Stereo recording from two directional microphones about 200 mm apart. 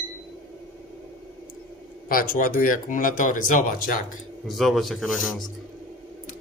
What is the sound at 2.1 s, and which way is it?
Speech, 45° left (ahead or behind).